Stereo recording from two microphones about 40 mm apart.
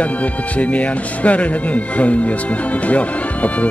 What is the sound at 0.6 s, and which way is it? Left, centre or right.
Speech, left.